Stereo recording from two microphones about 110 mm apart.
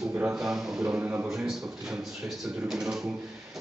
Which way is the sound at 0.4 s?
5° right (ahead or behind).